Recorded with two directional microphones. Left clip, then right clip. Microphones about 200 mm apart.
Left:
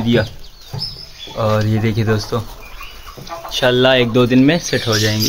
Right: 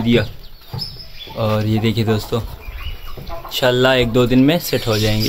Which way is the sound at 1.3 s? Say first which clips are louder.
Left 2 dB; centre (ahead or behind).